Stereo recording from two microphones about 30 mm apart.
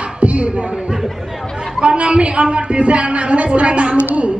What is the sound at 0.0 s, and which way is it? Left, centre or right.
Beatboxing, right.